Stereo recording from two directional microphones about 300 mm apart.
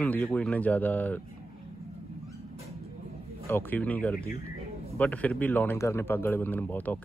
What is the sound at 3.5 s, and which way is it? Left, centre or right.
A man's voice, centre.